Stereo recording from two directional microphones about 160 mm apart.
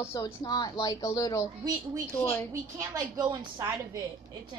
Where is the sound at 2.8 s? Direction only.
25° right (ahead or behind).